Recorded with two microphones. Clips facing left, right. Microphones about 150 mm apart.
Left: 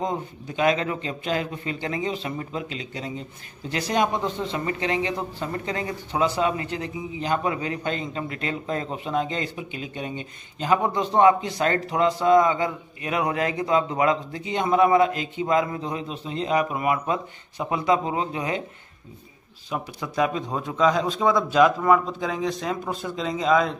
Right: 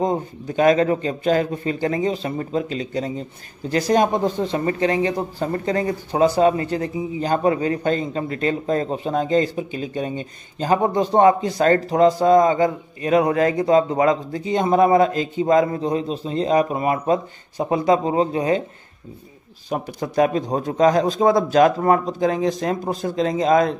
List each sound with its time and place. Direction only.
0.0 s speech: 40° right (ahead or behind)
19.7 s a man's voice: 45° right (ahead or behind)